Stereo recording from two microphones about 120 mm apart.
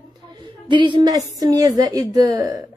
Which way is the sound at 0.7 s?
40° right (ahead or behind).